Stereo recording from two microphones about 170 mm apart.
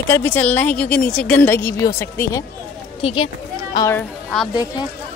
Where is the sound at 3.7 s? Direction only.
15° left (ahead or behind).